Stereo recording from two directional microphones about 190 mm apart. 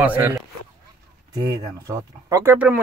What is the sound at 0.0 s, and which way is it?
Speech, 10° right (ahead or behind).